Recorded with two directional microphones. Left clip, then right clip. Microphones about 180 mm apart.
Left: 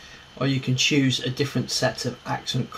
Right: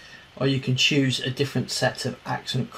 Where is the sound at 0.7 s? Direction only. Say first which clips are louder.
Left 1 dB; 25° right (ahead or behind).